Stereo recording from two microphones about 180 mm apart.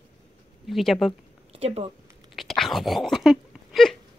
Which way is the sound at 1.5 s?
35° right (ahead or behind).